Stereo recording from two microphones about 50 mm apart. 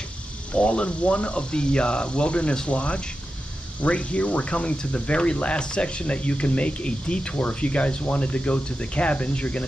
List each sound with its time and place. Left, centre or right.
0.5 s speech: left